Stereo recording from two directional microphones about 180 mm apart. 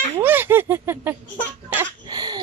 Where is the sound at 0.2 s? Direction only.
10° right (ahead or behind).